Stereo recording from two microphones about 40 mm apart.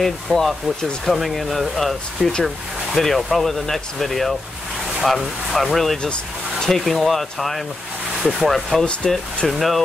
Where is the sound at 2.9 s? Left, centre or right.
Centre.